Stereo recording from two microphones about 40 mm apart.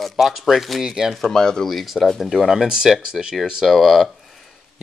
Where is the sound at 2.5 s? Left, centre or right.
Centre.